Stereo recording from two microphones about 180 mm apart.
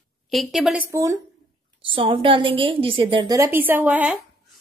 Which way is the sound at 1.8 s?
30° right (ahead or behind).